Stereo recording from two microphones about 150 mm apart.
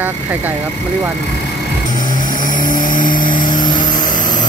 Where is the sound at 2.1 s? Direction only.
65° left (ahead or behind).